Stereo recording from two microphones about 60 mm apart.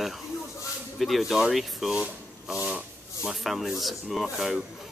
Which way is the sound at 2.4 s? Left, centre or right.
Centre.